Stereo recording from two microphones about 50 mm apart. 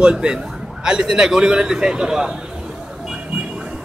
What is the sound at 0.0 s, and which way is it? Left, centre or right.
A man's voice, centre.